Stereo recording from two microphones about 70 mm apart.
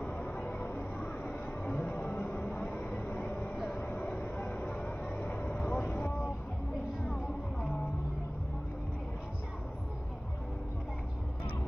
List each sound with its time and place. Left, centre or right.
0.4 s a sound: centre
2.0 s vehicle: centre
3.5 s vehicle: centre
4.2 s music: left
5.2 s vehicle: left
7.1 s music: centre